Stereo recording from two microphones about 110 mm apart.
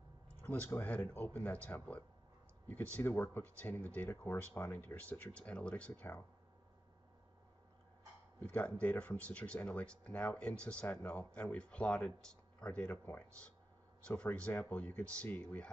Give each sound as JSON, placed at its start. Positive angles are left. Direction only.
{"t": 0.4, "sound": "speech", "side_deg": 20}
{"t": 8.5, "sound": "speech", "side_deg": 10}